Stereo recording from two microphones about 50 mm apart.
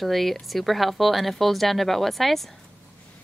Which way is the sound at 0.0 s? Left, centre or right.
Centre.